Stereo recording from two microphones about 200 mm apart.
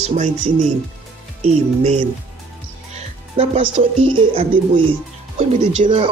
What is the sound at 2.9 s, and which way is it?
Speech, 30° right (ahead or behind).